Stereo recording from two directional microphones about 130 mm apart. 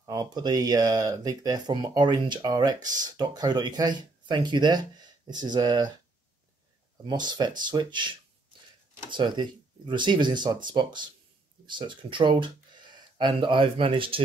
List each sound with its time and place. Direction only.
0.0 s speech: 30° right (ahead or behind)
7.1 s speech: 35° right (ahead or behind)
9.1 s speech: 35° right (ahead or behind)